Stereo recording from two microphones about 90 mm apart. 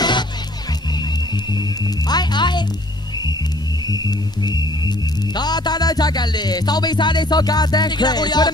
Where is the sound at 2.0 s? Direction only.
55° left (ahead or behind).